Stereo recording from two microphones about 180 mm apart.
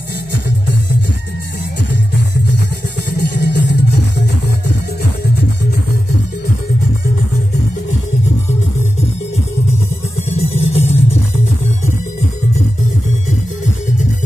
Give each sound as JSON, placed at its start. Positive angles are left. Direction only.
{"t": 3.2, "sound": "music", "side_deg": 70}
{"t": 10.3, "sound": "music", "side_deg": 35}